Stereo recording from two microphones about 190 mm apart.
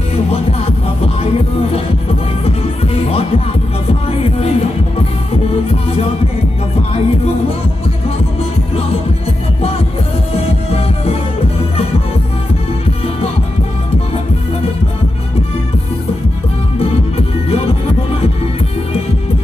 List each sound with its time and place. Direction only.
0.3 s music: 30° left (ahead or behind)
10.3 s music: 30° left (ahead or behind)